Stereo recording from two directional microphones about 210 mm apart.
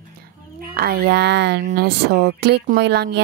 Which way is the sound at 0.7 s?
45° right (ahead or behind).